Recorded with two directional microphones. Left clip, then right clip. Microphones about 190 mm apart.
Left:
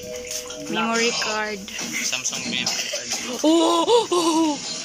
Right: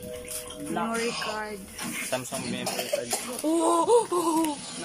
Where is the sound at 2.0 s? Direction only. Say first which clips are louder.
Left 6 dB; 40° right (ahead or behind).